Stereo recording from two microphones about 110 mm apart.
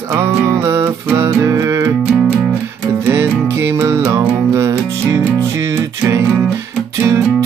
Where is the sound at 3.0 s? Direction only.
25° right (ahead or behind).